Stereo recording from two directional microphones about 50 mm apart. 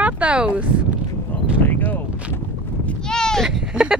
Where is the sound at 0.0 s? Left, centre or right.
Right.